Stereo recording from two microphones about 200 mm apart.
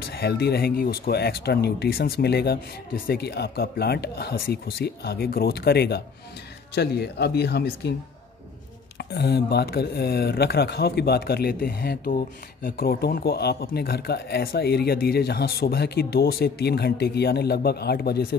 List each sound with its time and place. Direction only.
0.0 s speech: 55° left (ahead or behind)
8.9 s speech: 55° left (ahead or behind)